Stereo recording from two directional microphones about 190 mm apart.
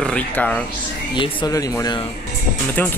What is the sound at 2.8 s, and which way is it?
Speech, 10° left (ahead or behind).